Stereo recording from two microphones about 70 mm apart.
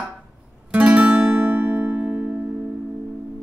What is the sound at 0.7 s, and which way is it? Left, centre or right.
Guitar, centre.